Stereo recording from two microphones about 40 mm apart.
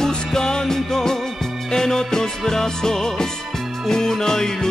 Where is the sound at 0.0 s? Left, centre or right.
Centre.